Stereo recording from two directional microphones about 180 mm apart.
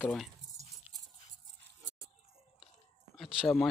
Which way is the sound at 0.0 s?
Centre (ahead or behind).